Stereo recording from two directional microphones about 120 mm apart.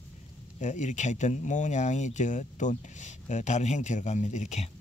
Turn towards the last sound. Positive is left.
turn(degrees=80)